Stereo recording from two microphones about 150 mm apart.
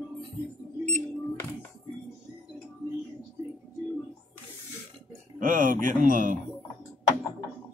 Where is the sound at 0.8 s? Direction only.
15° left (ahead or behind).